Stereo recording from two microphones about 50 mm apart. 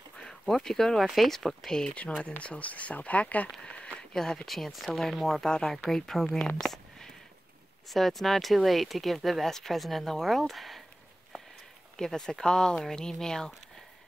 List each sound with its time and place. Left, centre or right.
0.2 s speech: centre
2.2 s speech: left
3.4 s speech: centre
3.7 s a sound: left
4.1 s speech: centre
12.0 s speech: centre